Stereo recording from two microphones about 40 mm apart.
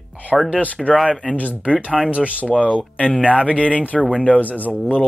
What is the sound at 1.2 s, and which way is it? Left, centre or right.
Speech, left.